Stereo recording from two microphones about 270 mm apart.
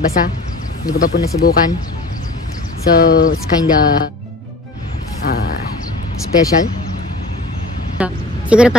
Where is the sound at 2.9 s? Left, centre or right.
Left.